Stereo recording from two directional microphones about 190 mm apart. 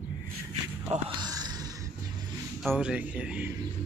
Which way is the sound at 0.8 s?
25° right (ahead or behind).